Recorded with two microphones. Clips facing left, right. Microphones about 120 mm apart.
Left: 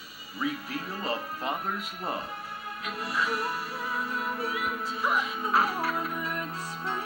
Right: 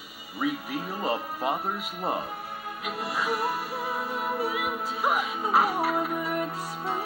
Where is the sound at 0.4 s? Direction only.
15° right (ahead or behind).